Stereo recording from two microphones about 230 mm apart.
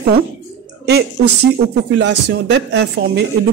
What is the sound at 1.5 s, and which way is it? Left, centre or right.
Speech, right.